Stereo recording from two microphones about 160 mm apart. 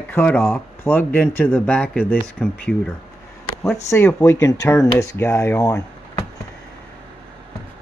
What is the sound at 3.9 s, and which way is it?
Speech, 15° left (ahead or behind).